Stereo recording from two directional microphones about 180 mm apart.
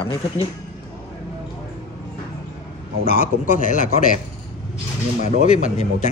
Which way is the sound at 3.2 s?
45° left (ahead or behind).